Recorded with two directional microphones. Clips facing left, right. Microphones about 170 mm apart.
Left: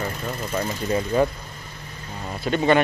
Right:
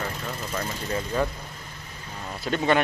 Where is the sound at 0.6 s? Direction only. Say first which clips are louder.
Left 6 dB; 25° left (ahead or behind).